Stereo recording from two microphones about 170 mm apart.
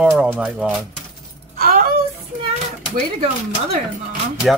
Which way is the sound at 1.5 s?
60° right (ahead or behind).